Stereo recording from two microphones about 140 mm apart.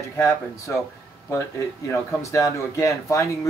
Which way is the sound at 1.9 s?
20° left (ahead or behind).